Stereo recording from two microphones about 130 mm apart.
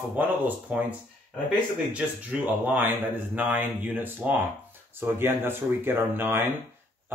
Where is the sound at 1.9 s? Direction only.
10° right (ahead or behind).